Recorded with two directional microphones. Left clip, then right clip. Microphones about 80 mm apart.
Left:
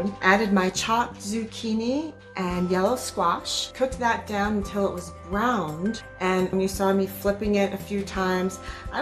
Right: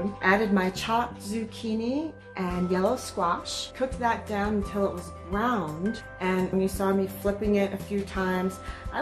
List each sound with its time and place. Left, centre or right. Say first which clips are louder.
0.2 s speech: left 3 dB; left